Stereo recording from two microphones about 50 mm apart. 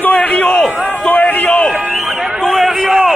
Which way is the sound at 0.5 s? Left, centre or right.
Centre.